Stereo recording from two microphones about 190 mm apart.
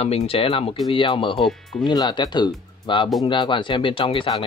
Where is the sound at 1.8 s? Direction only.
20° left (ahead or behind).